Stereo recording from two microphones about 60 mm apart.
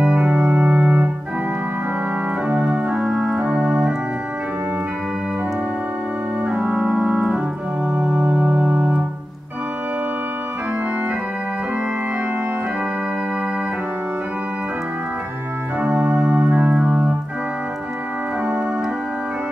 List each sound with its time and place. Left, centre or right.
0.0 s organ: right
2.4 s organ: right
6.4 s organ: right
7.9 s organ: right
15.8 s organ: right
16.1 s music: right
16.7 s organ: centre